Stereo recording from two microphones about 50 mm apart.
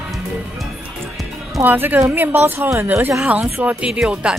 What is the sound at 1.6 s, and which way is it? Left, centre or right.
Speech, right.